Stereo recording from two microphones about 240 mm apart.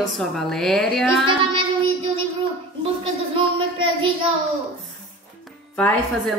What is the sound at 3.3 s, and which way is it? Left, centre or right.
Speech, right.